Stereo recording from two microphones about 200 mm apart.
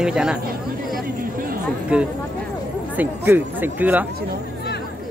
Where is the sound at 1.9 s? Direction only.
5° right (ahead or behind).